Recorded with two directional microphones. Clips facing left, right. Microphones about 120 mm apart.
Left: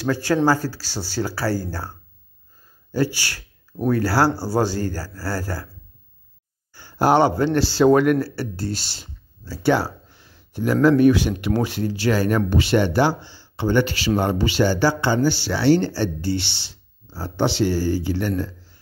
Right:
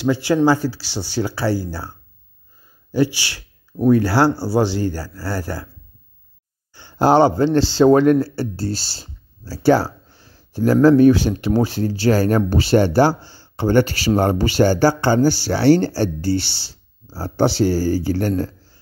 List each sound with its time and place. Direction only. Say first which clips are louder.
0.0 s speech: right 3 dB; 15° right (ahead or behind)
2.9 s speech: right 4 dB; 15° right (ahead or behind)
6.7 s a man's voice: right 3 dB; 25° right (ahead or behind); by 18.3 s 40° right (ahead or behind)